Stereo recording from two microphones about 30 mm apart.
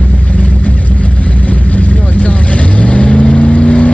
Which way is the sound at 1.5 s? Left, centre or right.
Left.